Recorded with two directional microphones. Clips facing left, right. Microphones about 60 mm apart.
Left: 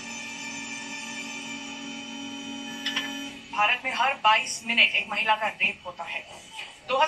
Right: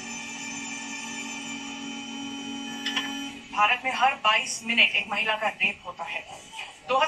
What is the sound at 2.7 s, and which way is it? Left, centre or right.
Tick-tock, centre.